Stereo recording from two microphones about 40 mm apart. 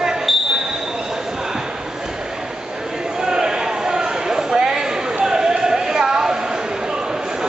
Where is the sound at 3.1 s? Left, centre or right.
Centre.